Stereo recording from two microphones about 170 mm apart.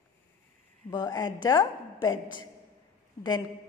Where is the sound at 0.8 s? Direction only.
20° left (ahead or behind).